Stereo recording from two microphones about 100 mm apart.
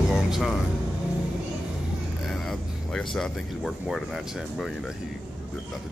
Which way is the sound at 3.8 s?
5° right (ahead or behind).